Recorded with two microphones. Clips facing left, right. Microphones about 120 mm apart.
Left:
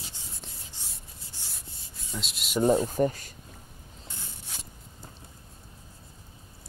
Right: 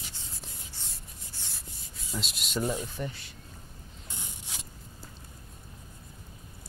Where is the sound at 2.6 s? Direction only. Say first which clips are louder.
Left 11 dB; 40° left (ahead or behind).